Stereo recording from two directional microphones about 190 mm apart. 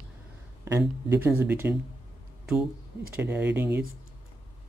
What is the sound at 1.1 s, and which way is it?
Speech, 15° right (ahead or behind).